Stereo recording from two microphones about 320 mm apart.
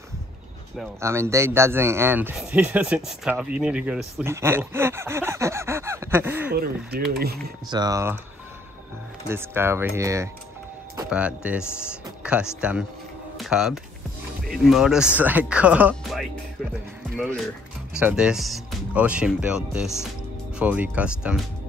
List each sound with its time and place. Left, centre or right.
0.7 s speech: centre
6.5 s speech: right
7.6 s speech: centre
9.3 s speech: centre
17.9 s speech: centre